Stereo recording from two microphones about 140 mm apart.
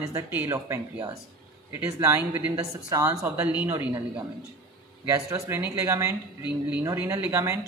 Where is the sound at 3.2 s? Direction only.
10° right (ahead or behind).